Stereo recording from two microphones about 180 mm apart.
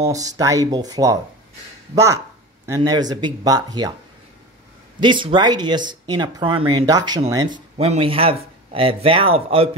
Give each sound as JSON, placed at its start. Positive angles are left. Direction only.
{"t": 0.0, "sound": "speech", "side_deg": -20}
{"t": 2.6, "sound": "speech", "side_deg": -20}
{"t": 5.0, "sound": "speech", "side_deg": -25}
{"t": 7.7, "sound": "speech", "side_deg": -35}